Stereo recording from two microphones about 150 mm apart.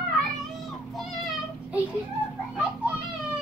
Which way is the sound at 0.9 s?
Centre (ahead or behind).